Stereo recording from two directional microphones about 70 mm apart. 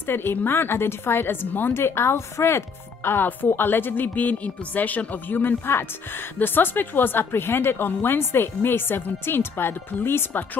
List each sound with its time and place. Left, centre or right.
0.0 s speech: left